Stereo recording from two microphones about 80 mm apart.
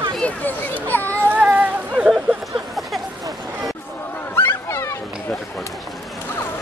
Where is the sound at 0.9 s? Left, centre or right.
Left.